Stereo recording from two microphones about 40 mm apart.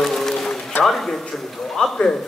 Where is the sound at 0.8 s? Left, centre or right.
Centre.